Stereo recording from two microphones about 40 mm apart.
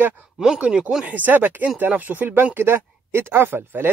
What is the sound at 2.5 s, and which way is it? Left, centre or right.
Speech, right.